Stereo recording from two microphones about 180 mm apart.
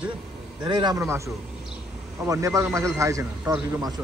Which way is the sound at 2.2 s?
15° right (ahead or behind).